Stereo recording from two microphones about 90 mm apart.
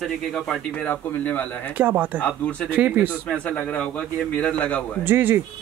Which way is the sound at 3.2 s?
10° left (ahead or behind).